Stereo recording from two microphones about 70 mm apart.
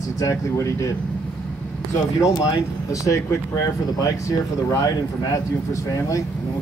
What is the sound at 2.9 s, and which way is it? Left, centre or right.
Speech, left.